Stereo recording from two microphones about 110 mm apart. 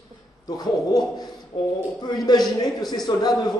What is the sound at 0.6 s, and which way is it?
A man's voice, 35° left (ahead or behind).